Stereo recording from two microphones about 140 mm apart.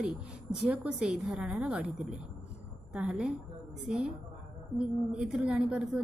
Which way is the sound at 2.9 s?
10° right (ahead or behind).